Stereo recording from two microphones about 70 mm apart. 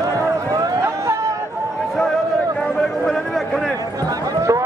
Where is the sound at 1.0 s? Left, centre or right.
Right.